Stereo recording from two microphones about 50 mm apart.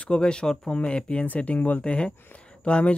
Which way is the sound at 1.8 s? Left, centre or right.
Left.